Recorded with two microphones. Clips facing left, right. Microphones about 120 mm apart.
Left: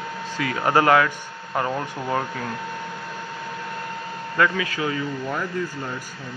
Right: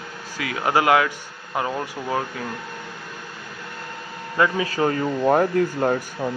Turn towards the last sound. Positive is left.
turn(degrees=-55)  # may be behind; listen again after turning